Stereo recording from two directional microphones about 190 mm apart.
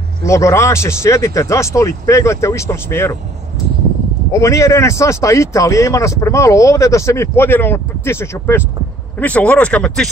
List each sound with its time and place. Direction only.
0.2 s speech: 15° left (ahead or behind)
4.3 s speech: 15° left (ahead or behind)